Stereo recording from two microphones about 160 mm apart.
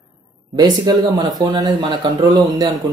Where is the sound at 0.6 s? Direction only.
25° right (ahead or behind).